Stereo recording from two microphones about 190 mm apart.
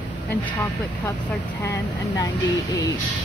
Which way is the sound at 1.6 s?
15° left (ahead or behind).